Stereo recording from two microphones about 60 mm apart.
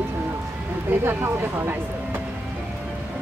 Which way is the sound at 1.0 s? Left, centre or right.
Right.